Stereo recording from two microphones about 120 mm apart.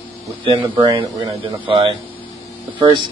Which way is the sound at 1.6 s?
55° right (ahead or behind).